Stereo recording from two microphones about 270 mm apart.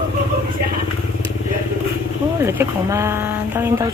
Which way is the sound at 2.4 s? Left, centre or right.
Centre.